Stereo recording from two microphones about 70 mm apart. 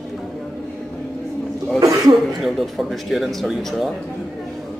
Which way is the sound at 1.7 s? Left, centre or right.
Right.